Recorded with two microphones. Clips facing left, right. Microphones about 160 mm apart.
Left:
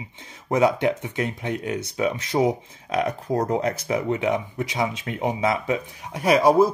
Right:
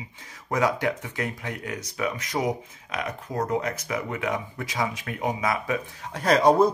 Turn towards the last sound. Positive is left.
turn(degrees=10)  # may be behind; listen again after turning